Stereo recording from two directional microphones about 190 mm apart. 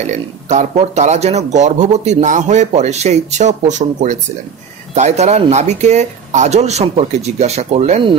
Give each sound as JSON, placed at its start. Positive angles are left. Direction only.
{"t": 0.0, "sound": "speech", "side_deg": -40}